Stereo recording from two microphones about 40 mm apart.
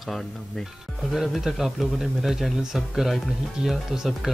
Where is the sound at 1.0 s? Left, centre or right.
Centre.